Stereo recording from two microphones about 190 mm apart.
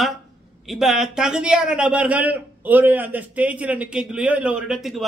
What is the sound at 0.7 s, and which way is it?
A man's voice, centre (ahead or behind).